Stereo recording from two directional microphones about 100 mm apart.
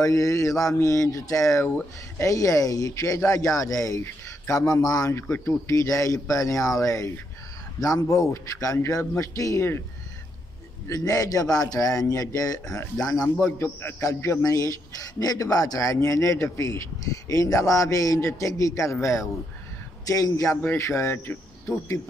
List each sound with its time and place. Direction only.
0.0 s a man's voice: 35° left (ahead or behind)
5.1 s a man's voice: 25° left (ahead or behind)
10.9 s a man's voice: 40° left (ahead or behind)
13.4 s a man's voice: 20° left (ahead or behind)